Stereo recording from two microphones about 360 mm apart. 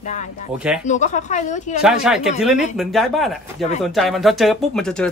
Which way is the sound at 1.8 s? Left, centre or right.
Centre.